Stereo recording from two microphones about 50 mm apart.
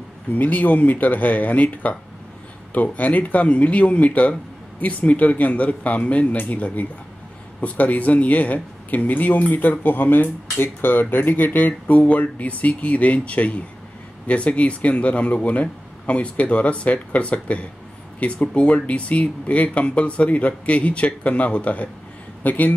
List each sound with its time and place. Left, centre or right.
0.3 s speech: left